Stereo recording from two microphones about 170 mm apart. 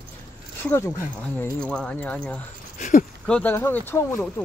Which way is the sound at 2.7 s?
45° left (ahead or behind).